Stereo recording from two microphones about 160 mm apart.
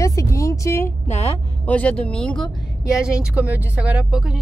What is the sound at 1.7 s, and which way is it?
Speech, 10° left (ahead or behind).